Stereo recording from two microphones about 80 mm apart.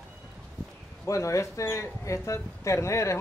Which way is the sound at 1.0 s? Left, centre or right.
Left.